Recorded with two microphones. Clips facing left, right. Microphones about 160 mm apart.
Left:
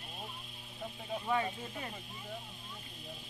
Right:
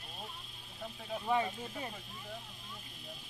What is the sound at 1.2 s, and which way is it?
Speech, 20° right (ahead or behind).